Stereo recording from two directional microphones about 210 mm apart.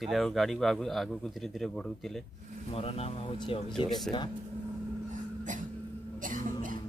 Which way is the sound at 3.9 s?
Centre (ahead or behind).